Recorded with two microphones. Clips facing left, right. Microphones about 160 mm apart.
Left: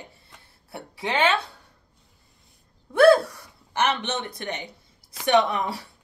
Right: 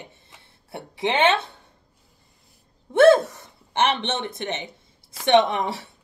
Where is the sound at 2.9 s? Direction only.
25° right (ahead or behind).